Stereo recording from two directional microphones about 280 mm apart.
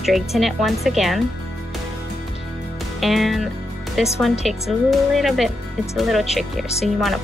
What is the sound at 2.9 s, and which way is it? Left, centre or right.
Speech, centre.